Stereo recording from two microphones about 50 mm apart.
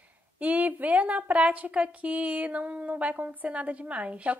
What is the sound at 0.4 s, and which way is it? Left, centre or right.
A woman's voice, right.